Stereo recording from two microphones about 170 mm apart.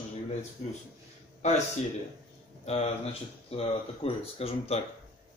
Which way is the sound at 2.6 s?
40° left (ahead or behind).